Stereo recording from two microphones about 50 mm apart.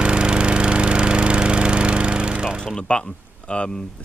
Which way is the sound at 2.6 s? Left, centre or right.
Centre.